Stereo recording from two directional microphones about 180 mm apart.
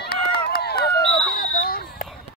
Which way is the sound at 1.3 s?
55° left (ahead or behind).